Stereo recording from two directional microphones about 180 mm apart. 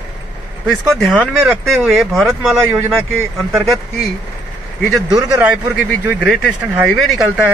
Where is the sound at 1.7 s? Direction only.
Centre (ahead or behind).